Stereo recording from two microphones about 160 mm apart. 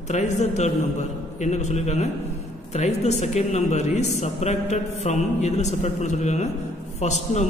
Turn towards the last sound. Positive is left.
turn(degrees=45)  # may be behind; listen again after turning